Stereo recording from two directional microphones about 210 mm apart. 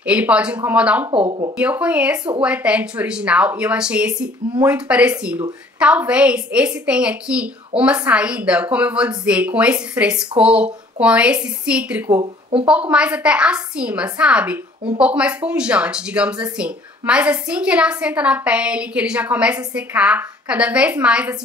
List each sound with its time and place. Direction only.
0.0 s a woman's voice: 5° right (ahead or behind)
12.2 s speech: 25° right (ahead or behind)
12.9 s a woman's voice: 5° right (ahead or behind)